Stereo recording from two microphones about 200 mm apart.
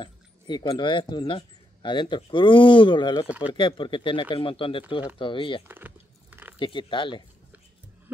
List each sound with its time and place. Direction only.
0.0 s speech: 20° left (ahead or behind)
3.3 s speech: 5° right (ahead or behind)
3.5 s speech: 25° left (ahead or behind)
5.7 s biting: 10° right (ahead or behind)
6.6 s speech: 25° left (ahead or behind)